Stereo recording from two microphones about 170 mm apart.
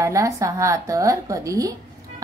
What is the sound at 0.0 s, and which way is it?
A woman's voice, 20° right (ahead or behind).